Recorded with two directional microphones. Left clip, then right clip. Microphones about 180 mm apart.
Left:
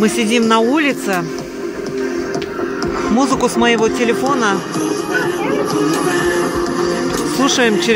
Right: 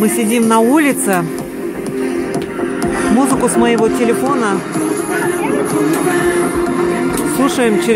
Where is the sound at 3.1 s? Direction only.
10° right (ahead or behind).